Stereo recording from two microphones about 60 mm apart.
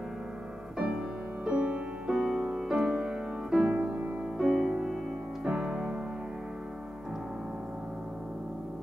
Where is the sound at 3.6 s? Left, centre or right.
Right.